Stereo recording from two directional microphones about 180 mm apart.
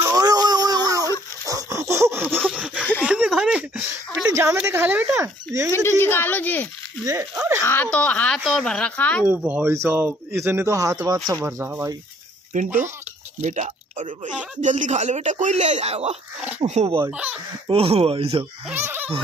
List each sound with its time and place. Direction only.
0.0 s a sound: 20° right (ahead or behind)
1.4 s laughter: 20° right (ahead or behind)
2.5 s chuckle: 5° right (ahead or behind)
3.0 s a sound: 5° right (ahead or behind)
5.7 s speech: 15° left (ahead or behind)
7.3 s a sound: 10° right (ahead or behind)
7.6 s speech: 10° left (ahead or behind)
9.3 s speech: 10° right (ahead or behind)
12.5 s speech: 45° right (ahead or behind)
17.0 s speech: 5° right (ahead or behind)
17.6 s speech: 30° right (ahead or behind)
18.7 s speech: 10° right (ahead or behind)